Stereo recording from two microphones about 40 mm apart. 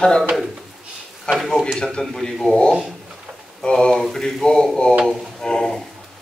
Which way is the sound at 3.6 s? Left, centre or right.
Left.